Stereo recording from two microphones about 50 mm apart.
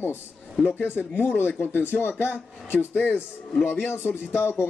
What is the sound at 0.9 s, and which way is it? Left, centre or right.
Speech, left.